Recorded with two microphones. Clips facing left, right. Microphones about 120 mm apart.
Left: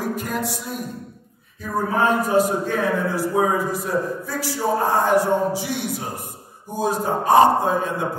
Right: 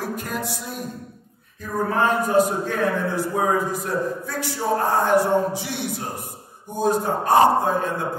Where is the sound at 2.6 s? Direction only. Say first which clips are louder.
Left 1 dB; 5° left (ahead or behind).